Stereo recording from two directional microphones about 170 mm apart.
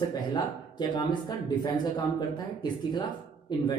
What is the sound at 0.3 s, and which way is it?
A man's voice, 25° left (ahead or behind).